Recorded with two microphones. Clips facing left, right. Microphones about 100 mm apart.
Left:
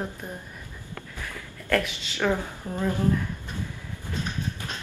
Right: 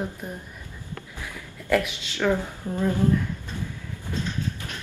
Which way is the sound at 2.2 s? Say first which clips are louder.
Right 2 dB; 15° left (ahead or behind).